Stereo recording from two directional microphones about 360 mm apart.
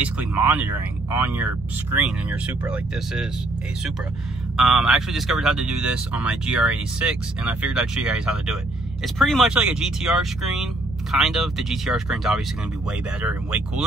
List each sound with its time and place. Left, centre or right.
0.0 s speech: centre
4.6 s speech: centre